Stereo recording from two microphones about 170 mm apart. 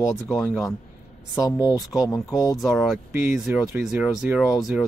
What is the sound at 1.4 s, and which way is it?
Speech, 20° left (ahead or behind).